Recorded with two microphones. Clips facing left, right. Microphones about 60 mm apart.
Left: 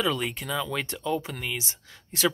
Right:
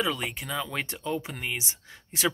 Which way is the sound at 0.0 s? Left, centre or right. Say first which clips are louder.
Left 2 dB; centre.